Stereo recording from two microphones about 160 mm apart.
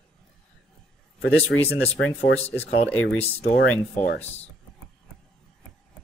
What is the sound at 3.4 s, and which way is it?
Speech, 70° left (ahead or behind).